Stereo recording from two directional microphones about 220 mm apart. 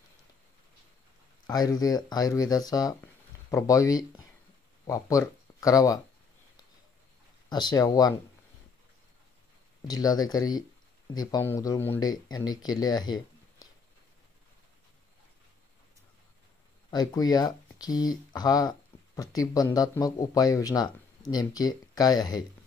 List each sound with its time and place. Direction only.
1.5 s speech: 15° left (ahead or behind)
7.4 s speech: 20° left (ahead or behind)
9.8 s speech: 15° left (ahead or behind)
16.9 s speech: 15° left (ahead or behind)